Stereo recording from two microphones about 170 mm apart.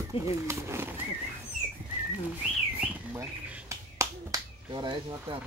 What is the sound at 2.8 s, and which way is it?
Speech, 15° right (ahead or behind).